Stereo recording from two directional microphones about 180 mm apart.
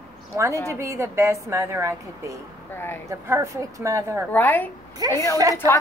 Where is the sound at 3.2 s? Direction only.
15° right (ahead or behind).